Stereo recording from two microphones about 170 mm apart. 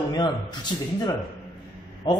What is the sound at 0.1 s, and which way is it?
A man's voice, 25° left (ahead or behind).